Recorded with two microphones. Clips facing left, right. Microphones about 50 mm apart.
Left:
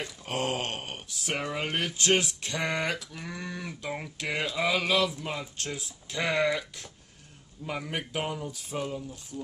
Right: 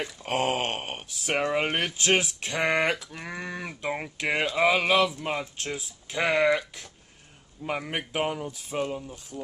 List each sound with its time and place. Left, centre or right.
0.2 s speech: right